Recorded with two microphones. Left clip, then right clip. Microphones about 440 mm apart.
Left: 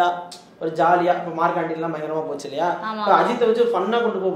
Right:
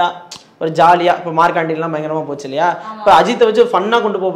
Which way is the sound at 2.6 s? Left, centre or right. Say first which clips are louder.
Right 8 dB; right.